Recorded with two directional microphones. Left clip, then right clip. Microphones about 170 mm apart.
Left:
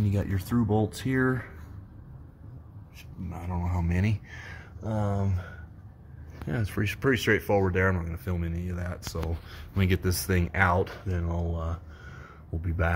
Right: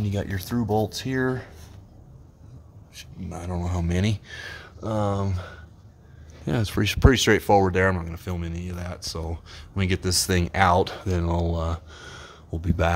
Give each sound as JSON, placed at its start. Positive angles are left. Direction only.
{"t": 0.1, "sound": "speech", "side_deg": 0}
{"t": 3.0, "sound": "speech", "side_deg": -40}
{"t": 4.5, "sound": "speech", "side_deg": -50}
{"t": 6.4, "sound": "speech", "side_deg": -40}
{"t": 10.8, "sound": "speech", "side_deg": -45}
{"t": 12.2, "sound": "a sound", "side_deg": -35}